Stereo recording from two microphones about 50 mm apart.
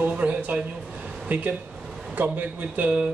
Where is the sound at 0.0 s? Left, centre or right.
Right.